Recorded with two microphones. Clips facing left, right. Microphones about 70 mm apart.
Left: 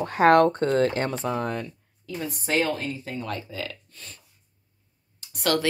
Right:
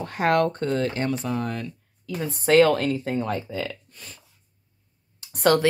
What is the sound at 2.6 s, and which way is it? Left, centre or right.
Speech, right.